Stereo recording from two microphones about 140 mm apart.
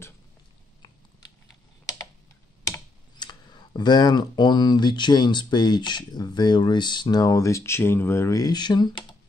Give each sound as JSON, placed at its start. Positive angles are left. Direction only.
{"t": 3.2, "sound": "speech", "side_deg": 30}